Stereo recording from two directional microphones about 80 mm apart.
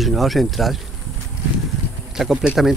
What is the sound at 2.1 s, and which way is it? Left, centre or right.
Speech, centre.